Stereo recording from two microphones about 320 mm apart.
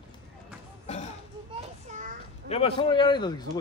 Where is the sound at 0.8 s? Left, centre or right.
Centre.